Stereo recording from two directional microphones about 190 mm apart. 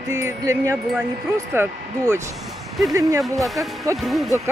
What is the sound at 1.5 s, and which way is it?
Speech, 15° right (ahead or behind).